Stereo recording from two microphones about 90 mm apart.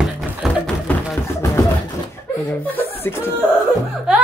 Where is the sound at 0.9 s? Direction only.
20° left (ahead or behind).